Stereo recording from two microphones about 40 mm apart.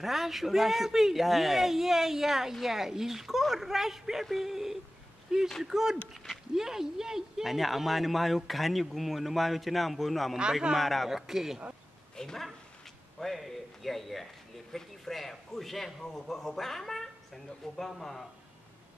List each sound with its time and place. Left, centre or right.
0.0 s speech: centre
6.1 s a sound: centre
6.5 s speech: centre
10.3 s speech: centre
10.8 s speech: centre
12.2 s a man's voice: centre